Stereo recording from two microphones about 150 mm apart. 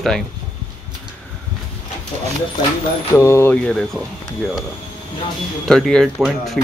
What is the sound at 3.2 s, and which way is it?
Speech, 20° left (ahead or behind).